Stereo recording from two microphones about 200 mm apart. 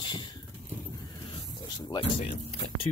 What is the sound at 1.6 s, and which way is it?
Speech, 20° left (ahead or behind).